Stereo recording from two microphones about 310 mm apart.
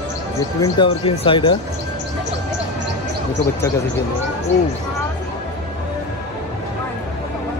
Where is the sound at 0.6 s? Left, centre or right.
Centre.